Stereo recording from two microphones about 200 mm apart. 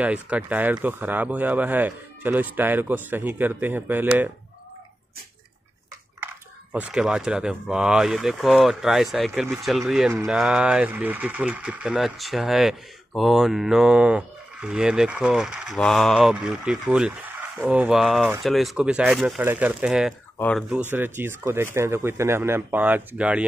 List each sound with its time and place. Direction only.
0.0 s speech: 5° right (ahead or behind)
6.2 s speech: 5° right (ahead or behind)
20.3 s speech: 5° left (ahead or behind)
20.9 s speech: 10° right (ahead or behind)